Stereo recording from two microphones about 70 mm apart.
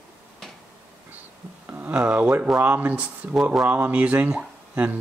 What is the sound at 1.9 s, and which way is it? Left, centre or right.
Speech, centre.